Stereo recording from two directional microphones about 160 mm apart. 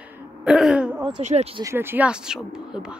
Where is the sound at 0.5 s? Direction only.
5° right (ahead or behind).